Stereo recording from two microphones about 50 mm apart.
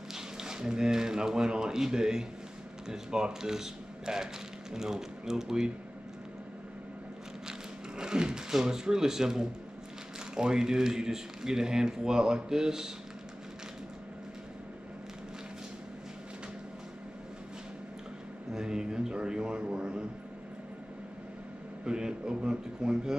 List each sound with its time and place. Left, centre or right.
0.1 s a sound: centre
2.9 s speech: centre
8.0 s speech: centre
18.5 s speech: centre
21.8 s speech: centre